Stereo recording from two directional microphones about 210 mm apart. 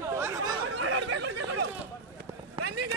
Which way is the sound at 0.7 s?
90° right.